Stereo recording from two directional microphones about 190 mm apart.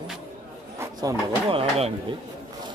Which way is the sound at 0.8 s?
20° right (ahead or behind).